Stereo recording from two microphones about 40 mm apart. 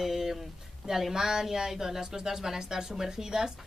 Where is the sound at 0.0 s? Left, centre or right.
Centre.